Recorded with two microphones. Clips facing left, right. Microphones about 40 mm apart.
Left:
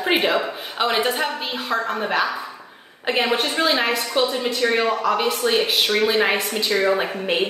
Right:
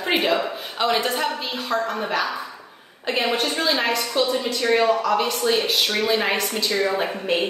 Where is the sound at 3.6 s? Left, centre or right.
Left.